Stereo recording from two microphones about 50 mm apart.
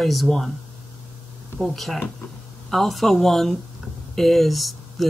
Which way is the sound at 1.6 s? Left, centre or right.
Centre.